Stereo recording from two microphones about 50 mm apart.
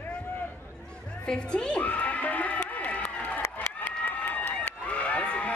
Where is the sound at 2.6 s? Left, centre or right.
Left.